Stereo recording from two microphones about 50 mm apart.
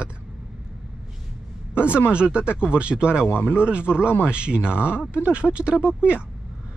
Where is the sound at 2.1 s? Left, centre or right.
Right.